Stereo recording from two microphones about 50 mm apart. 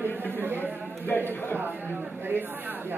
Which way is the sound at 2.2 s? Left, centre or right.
Right.